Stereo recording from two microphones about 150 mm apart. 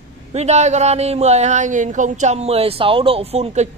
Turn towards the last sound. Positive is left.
turn(degrees=-45)  # may be behind; listen again after turning